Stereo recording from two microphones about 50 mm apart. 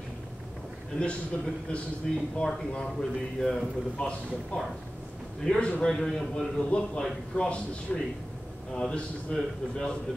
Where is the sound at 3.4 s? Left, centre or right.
Centre.